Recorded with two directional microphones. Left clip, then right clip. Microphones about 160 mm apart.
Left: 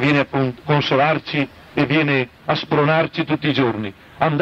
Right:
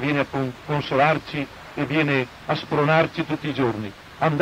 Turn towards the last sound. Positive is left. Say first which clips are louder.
# left 3 dB
turn(degrees=35)  # may be behind; listen again after turning